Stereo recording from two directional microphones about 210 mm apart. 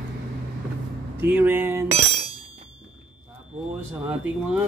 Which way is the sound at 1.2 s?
10° right (ahead or behind).